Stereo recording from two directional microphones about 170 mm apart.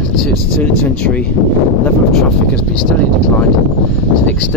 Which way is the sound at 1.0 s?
5° left (ahead or behind).